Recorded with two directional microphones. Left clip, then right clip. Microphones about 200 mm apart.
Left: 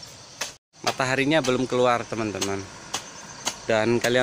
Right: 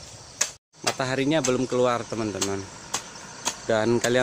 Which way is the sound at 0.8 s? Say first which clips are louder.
Left 2 dB; centre (ahead or behind).